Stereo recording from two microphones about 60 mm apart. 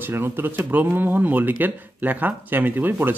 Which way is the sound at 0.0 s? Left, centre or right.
Right.